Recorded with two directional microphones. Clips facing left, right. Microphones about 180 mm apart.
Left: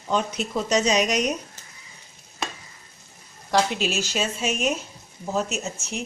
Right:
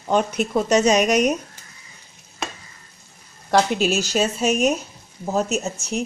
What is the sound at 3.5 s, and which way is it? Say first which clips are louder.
Speech: right 4 dB; 45° right (ahead or behind).